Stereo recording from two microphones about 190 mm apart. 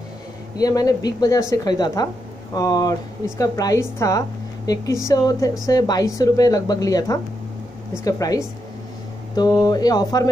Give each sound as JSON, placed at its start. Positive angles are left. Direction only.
{"t": 0.6, "sound": "a woman's voice", "side_deg": 20}